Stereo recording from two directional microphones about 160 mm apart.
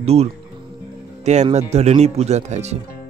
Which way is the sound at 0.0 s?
40° right (ahead or behind).